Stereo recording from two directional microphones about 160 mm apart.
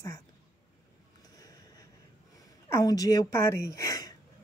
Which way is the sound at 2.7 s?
20° left (ahead or behind).